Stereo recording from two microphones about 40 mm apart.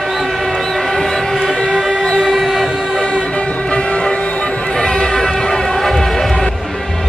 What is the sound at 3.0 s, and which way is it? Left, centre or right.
Vehicle, left.